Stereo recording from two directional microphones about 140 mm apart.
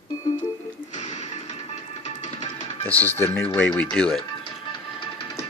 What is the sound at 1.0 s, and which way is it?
Music, 55° left (ahead or behind).